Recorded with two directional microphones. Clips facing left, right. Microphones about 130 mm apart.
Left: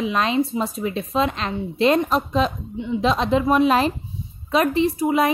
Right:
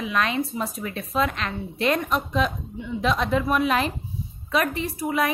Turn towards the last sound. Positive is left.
turn(degrees=25)  # may be behind; listen again after turning